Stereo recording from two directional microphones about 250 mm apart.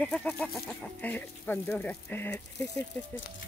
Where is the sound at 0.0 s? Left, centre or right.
Centre.